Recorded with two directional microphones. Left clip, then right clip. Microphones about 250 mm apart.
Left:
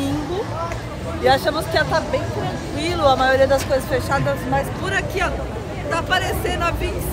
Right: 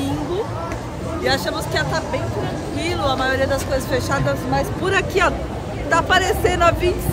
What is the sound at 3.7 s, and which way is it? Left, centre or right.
Speech, centre.